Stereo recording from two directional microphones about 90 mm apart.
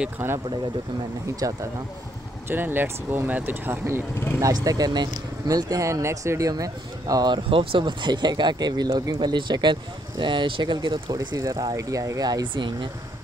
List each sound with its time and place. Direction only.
0.2 s speech: 25° right (ahead or behind)
1.2 s speech: 40° right (ahead or behind)
2.4 s speech: 25° right (ahead or behind)
4.4 s speech: 40° right (ahead or behind)
7.4 s speech: 85° right; by 12.9 s 60° right (ahead or behind)